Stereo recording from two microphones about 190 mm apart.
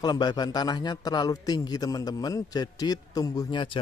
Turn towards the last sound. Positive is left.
turn(degrees=25)  # may be behind; listen again after turning